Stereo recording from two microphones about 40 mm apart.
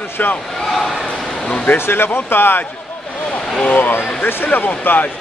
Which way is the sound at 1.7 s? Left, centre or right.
Left.